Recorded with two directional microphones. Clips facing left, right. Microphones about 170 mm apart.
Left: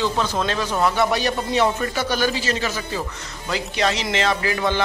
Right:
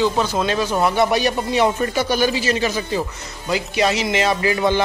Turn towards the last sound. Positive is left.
turn(degrees=-15)  # may be behind; listen again after turning